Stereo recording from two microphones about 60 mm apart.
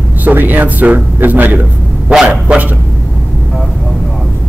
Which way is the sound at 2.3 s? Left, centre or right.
Centre.